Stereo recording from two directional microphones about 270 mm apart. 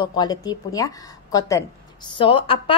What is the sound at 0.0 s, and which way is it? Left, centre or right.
A woman's voice, centre.